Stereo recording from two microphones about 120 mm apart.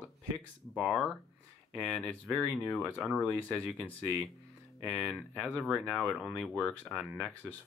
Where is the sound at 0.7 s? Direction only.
Centre (ahead or behind).